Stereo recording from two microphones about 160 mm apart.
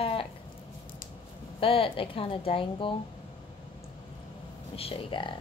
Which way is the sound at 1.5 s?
35° left (ahead or behind).